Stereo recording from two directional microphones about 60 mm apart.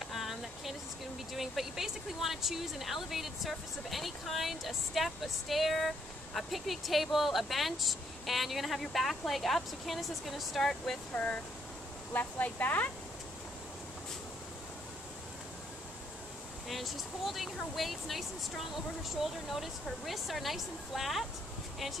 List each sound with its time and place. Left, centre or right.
0.1 s a sound: centre
1.3 s speech: centre
11.1 s speech: left
12.1 s speech: left
16.6 s speech: centre